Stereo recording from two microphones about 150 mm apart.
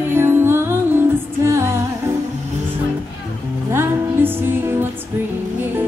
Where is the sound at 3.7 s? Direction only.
15° right (ahead or behind).